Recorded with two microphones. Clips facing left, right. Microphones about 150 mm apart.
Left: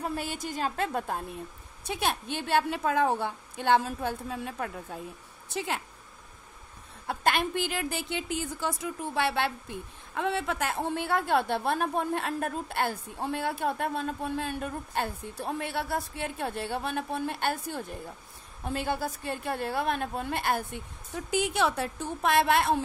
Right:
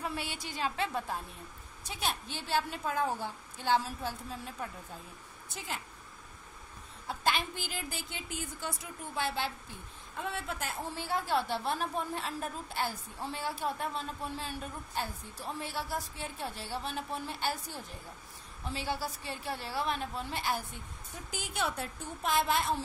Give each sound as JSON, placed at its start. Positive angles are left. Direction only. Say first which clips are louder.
{"t": 0.0, "sound": "a woman's voice", "louder": "left 5 dB", "side_deg": 45}
{"t": 7.1, "sound": "a woman's voice", "louder": "left 5 dB", "side_deg": 60}
{"t": 21.3, "sound": "a woman's voice", "louder": "left 9 dB", "side_deg": 80}